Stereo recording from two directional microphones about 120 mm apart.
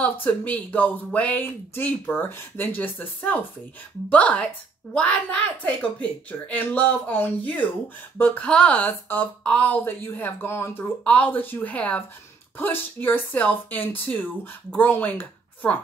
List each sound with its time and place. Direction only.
0.0 s speech: 15° left (ahead or behind)